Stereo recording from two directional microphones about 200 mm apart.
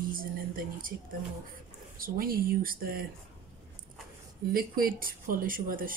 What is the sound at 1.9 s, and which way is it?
Speech, 45° right (ahead or behind).